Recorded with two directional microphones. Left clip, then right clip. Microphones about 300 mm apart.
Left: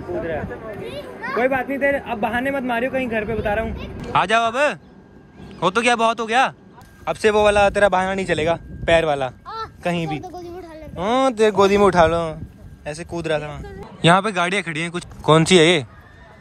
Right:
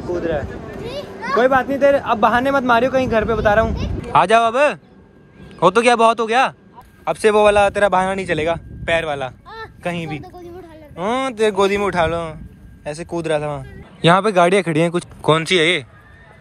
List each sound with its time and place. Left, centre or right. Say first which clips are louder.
0.8 s a child's voice: right 6 dB; right
1.4 s speech: right 5 dB; centre
3.6 s a child's voice: right 6 dB; right
4.0 s speech: right 4 dB; centre